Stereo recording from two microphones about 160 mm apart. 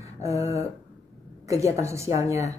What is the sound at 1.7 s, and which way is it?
Speech, 20° right (ahead or behind).